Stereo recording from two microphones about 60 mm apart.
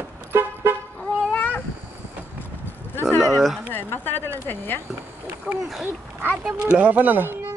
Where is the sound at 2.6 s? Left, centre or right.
Left.